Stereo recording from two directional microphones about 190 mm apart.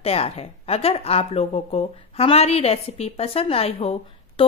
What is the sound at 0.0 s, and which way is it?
A woman's voice, 30° left (ahead or behind).